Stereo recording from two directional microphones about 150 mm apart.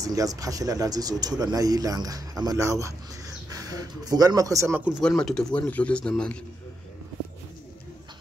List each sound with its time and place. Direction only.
0.0 s speech: 25° right (ahead or behind)
5.0 s speech: 5° left (ahead or behind)